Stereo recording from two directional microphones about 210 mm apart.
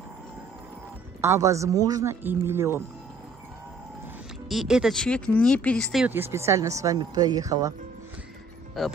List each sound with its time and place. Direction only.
1.2 s speech: 15° right (ahead or behind)
4.5 s speech: centre (ahead or behind)
8.8 s speech: centre (ahead or behind)